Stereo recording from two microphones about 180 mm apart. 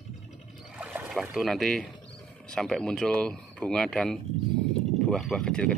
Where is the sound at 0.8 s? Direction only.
10° right (ahead or behind).